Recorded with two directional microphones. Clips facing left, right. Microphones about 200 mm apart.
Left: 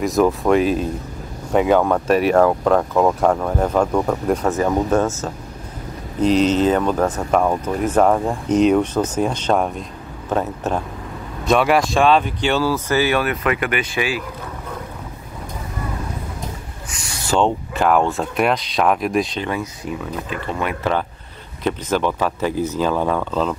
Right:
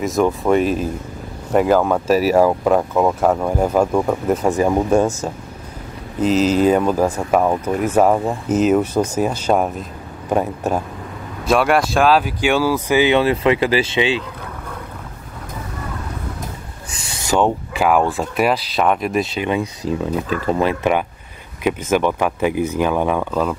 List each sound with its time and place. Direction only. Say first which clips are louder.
0.0 s speech: left 1 dB; centre (ahead or behind)
11.4 s speech: even; centre (ahead or behind); by 14.2 s 25° right (ahead or behind)
17.3 s speech: right 1 dB; 10° right (ahead or behind)
19.6 s speech: right 5 dB; 35° right (ahead or behind)
21.6 s speech: right 3 dB; 10° right (ahead or behind)